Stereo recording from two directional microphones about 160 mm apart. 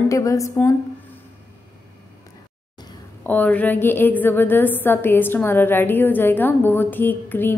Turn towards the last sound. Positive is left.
turn(degrees=10)  # may be behind; listen again after turning